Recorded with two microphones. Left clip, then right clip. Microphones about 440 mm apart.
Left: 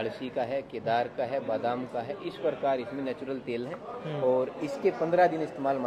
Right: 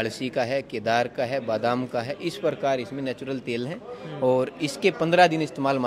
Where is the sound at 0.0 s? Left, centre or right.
Right.